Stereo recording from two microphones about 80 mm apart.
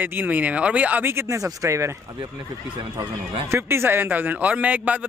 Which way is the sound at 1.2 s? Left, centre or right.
Right.